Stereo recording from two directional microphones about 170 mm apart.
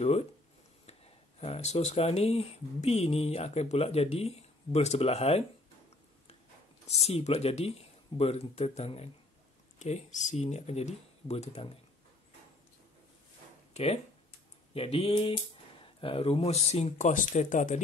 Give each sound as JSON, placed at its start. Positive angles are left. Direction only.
{"t": 0.8, "sound": "speech", "side_deg": 35}
{"t": 6.9, "sound": "speech", "side_deg": 35}
{"t": 14.7, "sound": "speech", "side_deg": 35}